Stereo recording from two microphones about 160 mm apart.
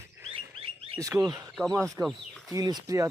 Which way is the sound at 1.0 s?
20° right (ahead or behind).